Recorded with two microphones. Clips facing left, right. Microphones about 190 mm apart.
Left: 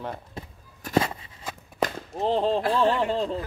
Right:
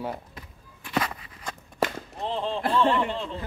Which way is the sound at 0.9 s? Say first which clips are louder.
Left 5 dB; 25° left (ahead or behind).